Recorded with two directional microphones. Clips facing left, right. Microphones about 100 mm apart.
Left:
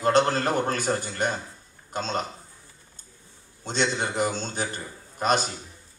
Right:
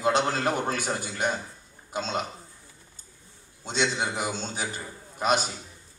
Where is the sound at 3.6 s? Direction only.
5° right (ahead or behind).